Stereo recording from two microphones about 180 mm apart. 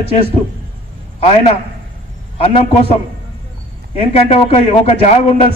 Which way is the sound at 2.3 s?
35° left (ahead or behind).